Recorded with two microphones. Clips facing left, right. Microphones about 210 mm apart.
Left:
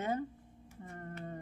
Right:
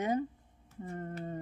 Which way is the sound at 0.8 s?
20° right (ahead or behind).